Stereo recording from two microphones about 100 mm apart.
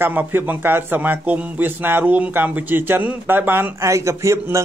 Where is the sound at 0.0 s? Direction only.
20° right (ahead or behind).